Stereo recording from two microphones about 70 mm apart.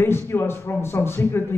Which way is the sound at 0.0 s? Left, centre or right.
Left.